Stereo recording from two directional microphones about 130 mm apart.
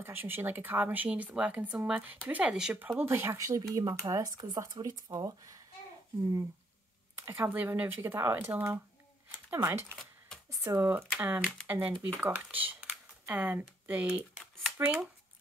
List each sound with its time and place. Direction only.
0.0 s speech: 15° right (ahead or behind)
3.0 s speech: 20° right (ahead or behind)
7.2 s speech: 20° right (ahead or behind)
12.6 s typing: 15° right (ahead or behind)